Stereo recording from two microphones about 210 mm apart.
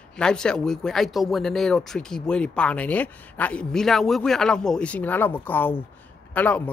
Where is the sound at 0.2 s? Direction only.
5° left (ahead or behind).